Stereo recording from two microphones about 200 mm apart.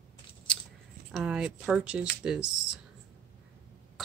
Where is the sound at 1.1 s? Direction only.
5° right (ahead or behind).